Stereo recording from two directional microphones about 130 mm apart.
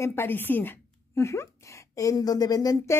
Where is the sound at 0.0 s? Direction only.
20° left (ahead or behind).